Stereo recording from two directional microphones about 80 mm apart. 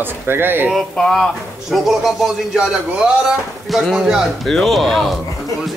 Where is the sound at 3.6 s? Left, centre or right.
Centre.